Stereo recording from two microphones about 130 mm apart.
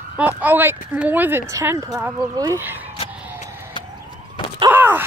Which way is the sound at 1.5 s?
25° right (ahead or behind).